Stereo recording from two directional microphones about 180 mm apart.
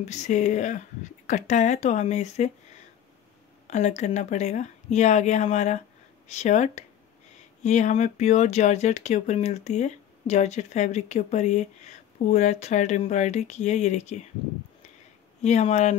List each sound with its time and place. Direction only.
0.0 s speech: 40° left (ahead or behind)
3.6 s speech: 40° left (ahead or behind)
15.4 s speech: 40° left (ahead or behind)